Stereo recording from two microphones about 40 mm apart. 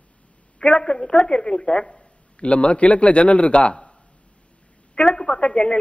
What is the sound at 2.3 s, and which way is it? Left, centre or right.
Speech, left.